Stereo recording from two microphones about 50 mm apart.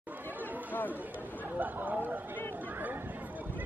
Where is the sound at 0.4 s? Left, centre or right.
Right.